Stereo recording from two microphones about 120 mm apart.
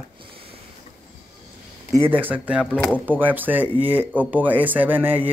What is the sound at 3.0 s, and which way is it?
Speech, 15° right (ahead or behind).